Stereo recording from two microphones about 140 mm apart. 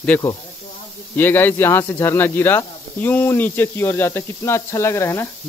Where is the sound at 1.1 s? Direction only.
15° left (ahead or behind).